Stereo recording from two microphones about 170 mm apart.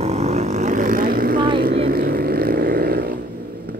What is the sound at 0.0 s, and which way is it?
Vehicle, 40° right (ahead or behind).